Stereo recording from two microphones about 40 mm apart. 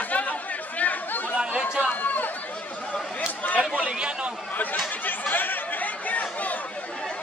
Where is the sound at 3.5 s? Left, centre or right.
Right.